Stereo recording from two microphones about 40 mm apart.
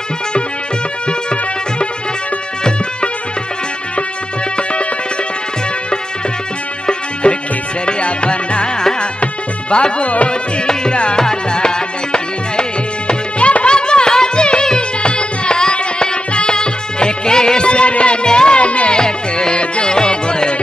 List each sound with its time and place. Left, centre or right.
7.2 s music: left
10.7 s tabla: left
11.2 s music: centre
18.9 s music: centre